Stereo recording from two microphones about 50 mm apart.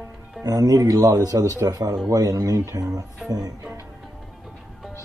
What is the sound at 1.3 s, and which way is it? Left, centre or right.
Speech, right.